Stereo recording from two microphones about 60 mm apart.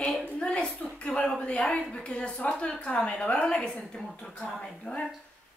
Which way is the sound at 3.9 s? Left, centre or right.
Centre.